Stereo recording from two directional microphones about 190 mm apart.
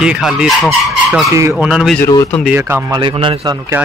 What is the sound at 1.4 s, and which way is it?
Speech, 15° right (ahead or behind).